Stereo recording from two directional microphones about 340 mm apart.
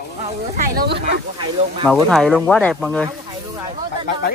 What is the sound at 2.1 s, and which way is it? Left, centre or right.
Speech, centre.